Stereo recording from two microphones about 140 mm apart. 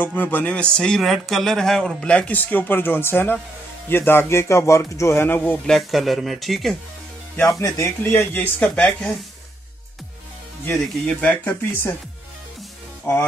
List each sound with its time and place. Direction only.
0.0 s speech: 15° left (ahead or behind)
5.7 s speech: centre (ahead or behind)
7.5 s speech: 25° left (ahead or behind); by 9.1 s 10° left (ahead or behind)
10.6 s speech: 10° left (ahead or behind)
13.0 s speech: 15° left (ahead or behind)